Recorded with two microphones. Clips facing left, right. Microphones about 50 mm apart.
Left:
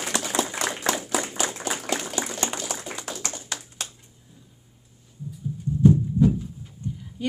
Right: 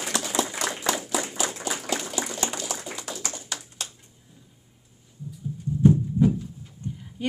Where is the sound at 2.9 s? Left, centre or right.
Left.